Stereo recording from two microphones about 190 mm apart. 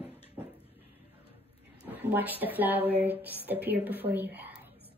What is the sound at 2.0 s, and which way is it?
Child singing, 10° right (ahead or behind).